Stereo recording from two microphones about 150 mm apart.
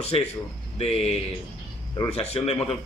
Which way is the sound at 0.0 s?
45° left (ahead or behind).